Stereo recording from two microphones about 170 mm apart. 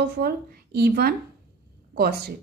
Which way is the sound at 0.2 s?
65° right (ahead or behind).